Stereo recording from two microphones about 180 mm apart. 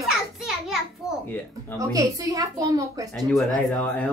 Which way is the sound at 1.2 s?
10° left (ahead or behind).